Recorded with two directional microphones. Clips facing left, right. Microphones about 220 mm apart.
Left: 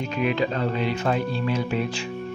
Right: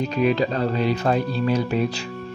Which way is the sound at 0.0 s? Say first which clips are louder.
Right 4 dB; 35° right (ahead or behind).